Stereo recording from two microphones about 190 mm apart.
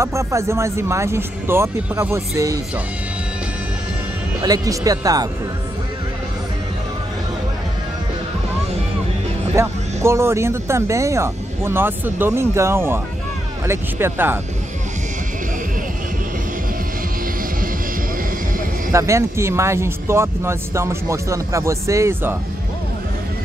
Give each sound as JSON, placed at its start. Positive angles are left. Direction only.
{"t": 0.0, "sound": "speech", "side_deg": -15}
{"t": 4.4, "sound": "speech", "side_deg": -20}
{"t": 9.6, "sound": "speech", "side_deg": -15}
{"t": 18.9, "sound": "speech", "side_deg": -15}